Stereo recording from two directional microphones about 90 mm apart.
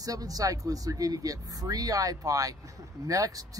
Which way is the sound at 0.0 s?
40° right (ahead or behind).